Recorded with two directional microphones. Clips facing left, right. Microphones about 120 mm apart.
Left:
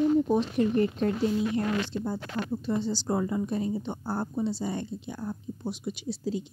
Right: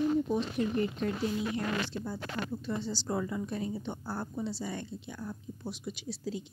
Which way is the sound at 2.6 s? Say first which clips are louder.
Left 6 dB; 20° left (ahead or behind).